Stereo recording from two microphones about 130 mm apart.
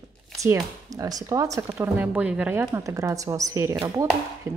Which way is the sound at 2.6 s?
25° right (ahead or behind).